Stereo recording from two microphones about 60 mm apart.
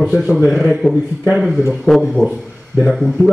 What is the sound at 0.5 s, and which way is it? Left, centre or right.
A man's voice, centre.